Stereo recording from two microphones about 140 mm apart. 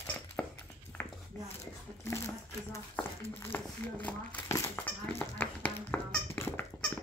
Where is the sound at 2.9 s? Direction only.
15° left (ahead or behind).